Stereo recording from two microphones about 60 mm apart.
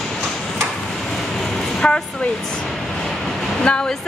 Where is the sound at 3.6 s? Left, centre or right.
Centre.